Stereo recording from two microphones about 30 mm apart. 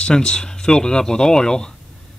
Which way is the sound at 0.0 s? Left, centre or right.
Left.